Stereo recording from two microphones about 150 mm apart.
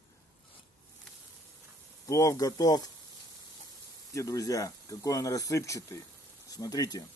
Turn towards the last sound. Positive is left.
turn(degrees=25)  # may be behind; listen again after turning